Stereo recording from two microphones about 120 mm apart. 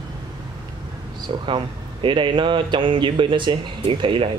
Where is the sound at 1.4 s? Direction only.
45° right (ahead or behind).